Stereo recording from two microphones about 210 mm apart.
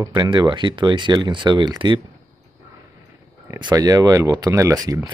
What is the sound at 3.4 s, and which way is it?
Speech, 15° right (ahead or behind).